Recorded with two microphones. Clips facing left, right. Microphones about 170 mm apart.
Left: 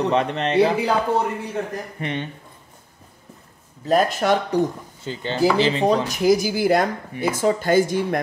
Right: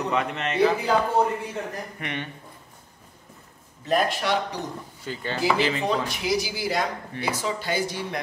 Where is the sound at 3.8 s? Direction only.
45° left (ahead or behind).